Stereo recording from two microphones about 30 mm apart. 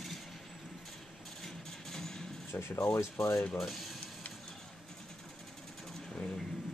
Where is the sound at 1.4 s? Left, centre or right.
Centre.